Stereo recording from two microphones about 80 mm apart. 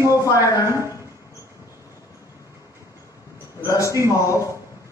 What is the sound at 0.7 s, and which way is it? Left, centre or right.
Speech, right.